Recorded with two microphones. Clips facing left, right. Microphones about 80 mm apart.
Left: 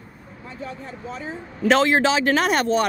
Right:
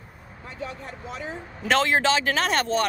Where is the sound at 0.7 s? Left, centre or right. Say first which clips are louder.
Left 3 dB; right.